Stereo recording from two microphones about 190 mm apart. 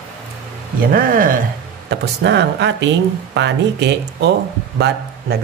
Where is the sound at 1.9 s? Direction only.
65° right (ahead or behind).